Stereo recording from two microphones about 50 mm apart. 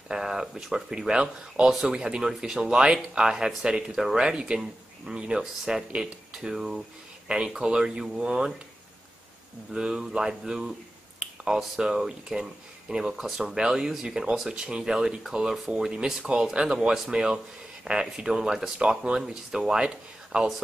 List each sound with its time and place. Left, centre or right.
0.1 s speech: centre
9.8 s speech: centre